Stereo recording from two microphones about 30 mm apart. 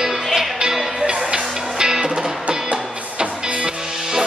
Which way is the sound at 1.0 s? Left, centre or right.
Right.